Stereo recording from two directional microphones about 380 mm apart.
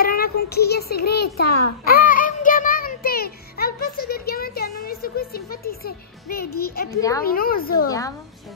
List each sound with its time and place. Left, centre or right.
0.0 s a child's voice: left
1.9 s child singing: left
7.0 s a woman's voice: centre
7.2 s a woman's voice: left